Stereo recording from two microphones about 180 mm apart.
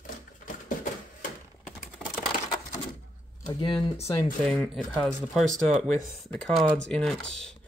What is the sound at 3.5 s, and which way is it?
Speech, 25° left (ahead or behind).